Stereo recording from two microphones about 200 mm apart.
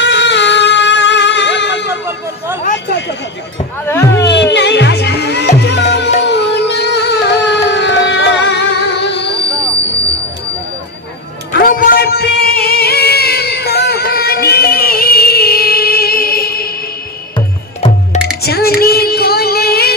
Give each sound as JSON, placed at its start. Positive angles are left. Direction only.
{"t": 0.0, "sound": "music", "side_deg": 60}
{"t": 2.0, "sound": "a sound", "side_deg": -10}
{"t": 4.3, "sound": "music", "side_deg": 60}
{"t": 11.5, "sound": "music", "side_deg": 45}
{"t": 17.7, "sound": "music", "side_deg": 30}
{"t": 18.4, "sound": "child singing", "side_deg": 50}